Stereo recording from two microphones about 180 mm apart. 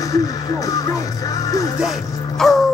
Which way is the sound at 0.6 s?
20° left (ahead or behind).